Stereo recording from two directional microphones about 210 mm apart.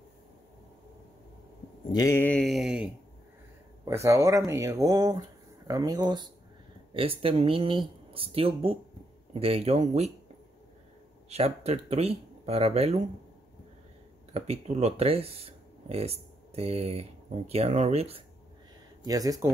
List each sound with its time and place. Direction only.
1.9 s mantra: 15° left (ahead or behind); by 2.9 s centre (ahead or behind)
3.8 s speech: 15° right (ahead or behind); by 10.1 s 30° right (ahead or behind)
11.2 s speech: 30° right (ahead or behind)
14.3 s speech: 30° right (ahead or behind)
19.0 s speech: 15° right (ahead or behind)